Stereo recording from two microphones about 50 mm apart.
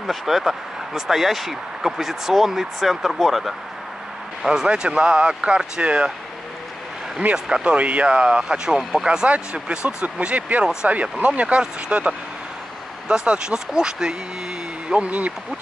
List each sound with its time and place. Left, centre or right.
0.0 s speech: centre
4.5 s speech: centre
7.3 s speech: centre
7.7 s speech: right
15.0 s speech: right